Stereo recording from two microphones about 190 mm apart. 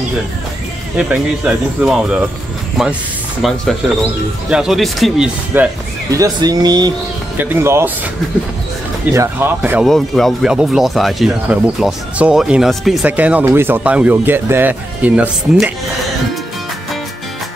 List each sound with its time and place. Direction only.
0.9 s speech: 5° right (ahead or behind)
9.1 s speech: 15° right (ahead or behind)